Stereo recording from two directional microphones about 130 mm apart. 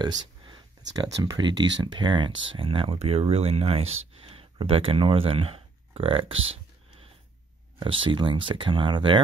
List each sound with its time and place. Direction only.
0.0 s speech: 35° right (ahead or behind)
7.8 s speech: 40° right (ahead or behind)